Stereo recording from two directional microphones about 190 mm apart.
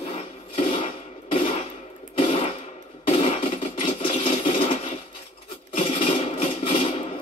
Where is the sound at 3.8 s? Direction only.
30° left (ahead or behind).